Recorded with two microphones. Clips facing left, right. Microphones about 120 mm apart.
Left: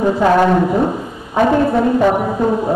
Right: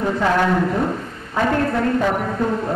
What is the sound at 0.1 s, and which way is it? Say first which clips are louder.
Speech: left 5 dB; 25° left (ahead or behind).